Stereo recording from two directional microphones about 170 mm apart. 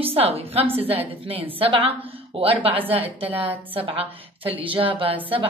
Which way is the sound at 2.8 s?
10° right (ahead or behind).